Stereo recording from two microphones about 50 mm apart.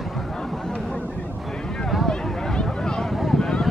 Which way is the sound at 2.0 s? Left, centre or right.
Centre.